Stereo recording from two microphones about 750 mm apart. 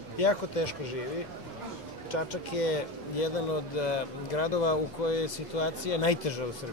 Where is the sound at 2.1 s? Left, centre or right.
Left.